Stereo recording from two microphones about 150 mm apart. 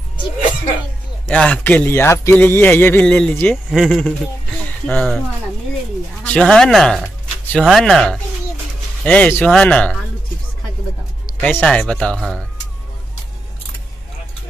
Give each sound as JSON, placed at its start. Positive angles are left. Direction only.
{"t": 1.2, "sound": "speech", "side_deg": 5}
{"t": 6.2, "sound": "speech", "side_deg": 5}
{"t": 11.4, "sound": "speech", "side_deg": 5}